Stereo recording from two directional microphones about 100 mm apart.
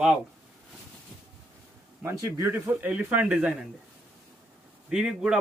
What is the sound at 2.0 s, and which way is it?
A man's voice, 30° right (ahead or behind).